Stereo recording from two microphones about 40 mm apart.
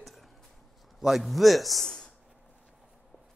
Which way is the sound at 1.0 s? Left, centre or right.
Centre.